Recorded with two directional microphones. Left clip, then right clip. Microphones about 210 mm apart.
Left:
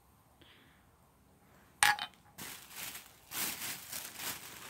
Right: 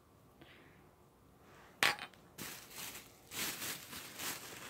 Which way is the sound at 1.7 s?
20° left (ahead or behind).